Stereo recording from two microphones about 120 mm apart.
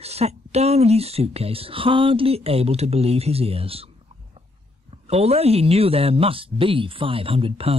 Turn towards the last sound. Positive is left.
turn(degrees=-50)  # may be behind; listen again after turning